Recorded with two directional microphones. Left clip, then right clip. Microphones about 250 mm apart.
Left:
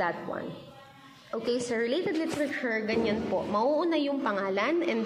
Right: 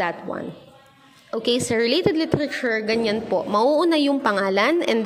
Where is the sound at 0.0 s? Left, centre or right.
Right.